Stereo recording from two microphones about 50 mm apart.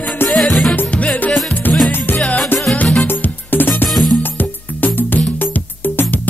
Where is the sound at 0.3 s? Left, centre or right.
Centre.